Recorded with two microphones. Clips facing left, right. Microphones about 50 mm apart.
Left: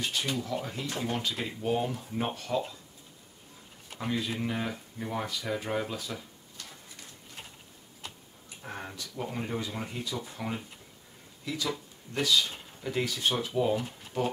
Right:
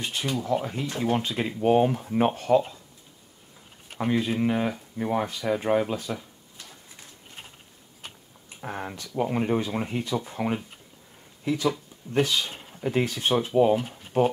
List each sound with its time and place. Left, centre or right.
0.0 s speech: right
4.0 s speech: right
8.5 s speech: right
13.7 s speech: right